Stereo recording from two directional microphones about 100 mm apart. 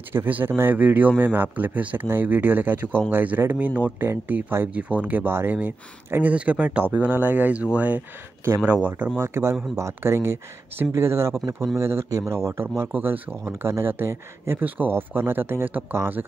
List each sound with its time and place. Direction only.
0.1 s speech: 20° right (ahead or behind)